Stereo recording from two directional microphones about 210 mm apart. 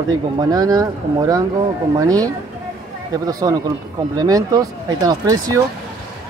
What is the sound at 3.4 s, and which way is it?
A man's voice, 20° right (ahead or behind).